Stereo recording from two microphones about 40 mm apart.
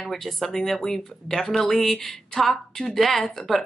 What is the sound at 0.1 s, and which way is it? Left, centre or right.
A woman's voice, centre.